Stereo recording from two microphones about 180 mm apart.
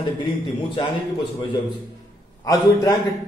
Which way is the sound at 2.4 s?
20° left (ahead or behind).